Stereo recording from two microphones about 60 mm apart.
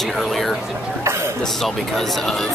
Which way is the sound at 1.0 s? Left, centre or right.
Right.